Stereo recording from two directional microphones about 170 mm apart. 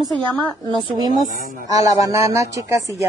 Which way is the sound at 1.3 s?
50° right (ahead or behind).